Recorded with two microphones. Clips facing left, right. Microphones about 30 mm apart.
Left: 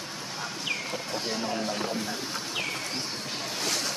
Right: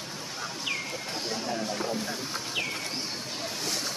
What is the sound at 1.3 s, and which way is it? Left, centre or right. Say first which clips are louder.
Speech: left 1 dB; centre.